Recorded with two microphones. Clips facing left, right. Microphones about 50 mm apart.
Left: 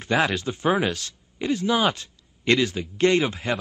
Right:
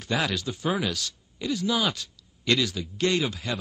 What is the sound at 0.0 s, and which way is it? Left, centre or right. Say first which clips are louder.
Speech: left 5 dB; left.